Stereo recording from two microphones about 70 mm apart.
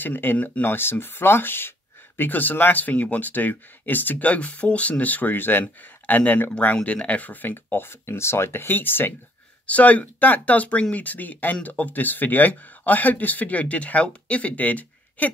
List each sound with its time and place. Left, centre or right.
0.0 s speech: left
7.5 s speech: left